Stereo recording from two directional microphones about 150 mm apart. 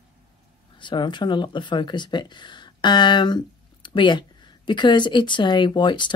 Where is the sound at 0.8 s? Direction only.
30° left (ahead or behind).